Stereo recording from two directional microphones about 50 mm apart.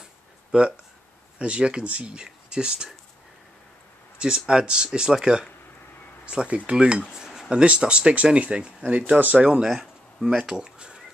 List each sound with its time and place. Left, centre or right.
0.0 s a sound: centre
1.4 s speech: right
4.5 s speech: centre
9.5 s speech: centre